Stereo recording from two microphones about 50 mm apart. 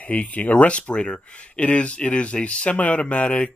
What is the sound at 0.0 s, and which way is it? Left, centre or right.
Speech, left.